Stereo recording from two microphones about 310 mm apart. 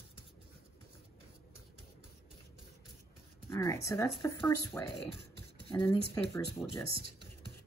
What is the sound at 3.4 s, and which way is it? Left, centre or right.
Speech, centre.